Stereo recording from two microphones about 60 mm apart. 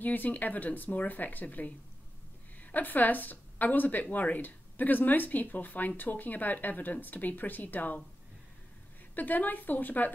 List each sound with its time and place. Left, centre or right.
0.0 s speech: left
9.1 s speech: left